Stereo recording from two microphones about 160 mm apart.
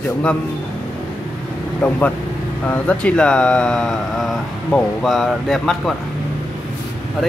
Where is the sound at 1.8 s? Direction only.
5° left (ahead or behind).